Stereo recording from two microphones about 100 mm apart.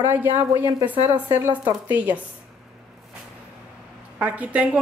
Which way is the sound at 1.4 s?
20° right (ahead or behind).